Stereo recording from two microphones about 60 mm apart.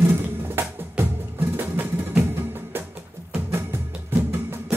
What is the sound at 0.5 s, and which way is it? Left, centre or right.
Music, right.